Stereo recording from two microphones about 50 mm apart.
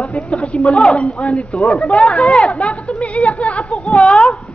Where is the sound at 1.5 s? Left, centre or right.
Left.